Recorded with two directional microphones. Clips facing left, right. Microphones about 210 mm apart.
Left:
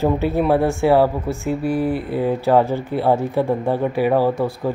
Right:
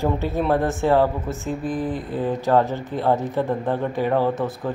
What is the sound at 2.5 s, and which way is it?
Speech, 15° left (ahead or behind).